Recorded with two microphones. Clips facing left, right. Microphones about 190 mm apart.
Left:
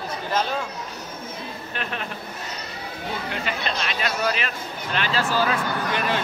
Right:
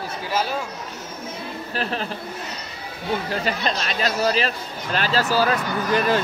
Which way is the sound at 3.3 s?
40° right (ahead or behind).